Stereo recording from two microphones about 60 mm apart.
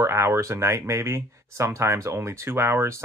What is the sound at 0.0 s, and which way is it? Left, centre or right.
Speech, right.